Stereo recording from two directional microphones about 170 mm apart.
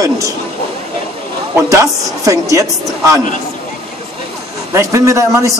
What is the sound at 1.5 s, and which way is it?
A man's voice, 20° right (ahead or behind).